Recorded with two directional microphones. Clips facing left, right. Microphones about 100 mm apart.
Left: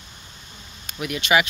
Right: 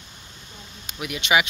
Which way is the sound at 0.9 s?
15° right (ahead or behind).